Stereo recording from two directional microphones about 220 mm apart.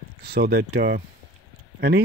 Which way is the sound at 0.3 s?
45° right (ahead or behind).